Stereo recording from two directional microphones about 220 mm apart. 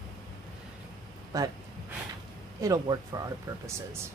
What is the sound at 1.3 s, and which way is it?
Speech, 15° right (ahead or behind).